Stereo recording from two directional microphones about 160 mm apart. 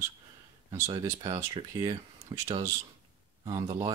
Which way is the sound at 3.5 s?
20° right (ahead or behind).